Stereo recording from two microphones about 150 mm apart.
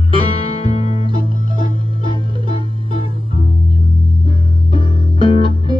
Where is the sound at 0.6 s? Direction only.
40° left (ahead or behind).